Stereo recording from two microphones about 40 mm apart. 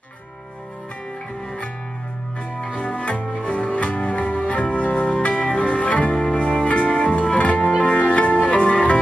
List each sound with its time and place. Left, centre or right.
2.5 s music: left
2.9 s music: left